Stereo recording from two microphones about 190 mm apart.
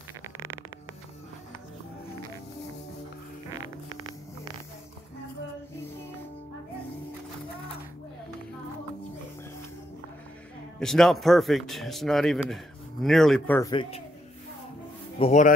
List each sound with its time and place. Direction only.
10.8 s a man's voice: centre (ahead or behind)
13.6 s speech: 25° left (ahead or behind)
15.1 s speech: 35° left (ahead or behind)